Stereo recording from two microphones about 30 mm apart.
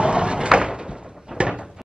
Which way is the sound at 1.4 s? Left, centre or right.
Right.